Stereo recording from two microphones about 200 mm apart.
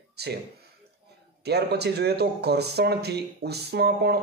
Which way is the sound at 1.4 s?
55° right (ahead or behind).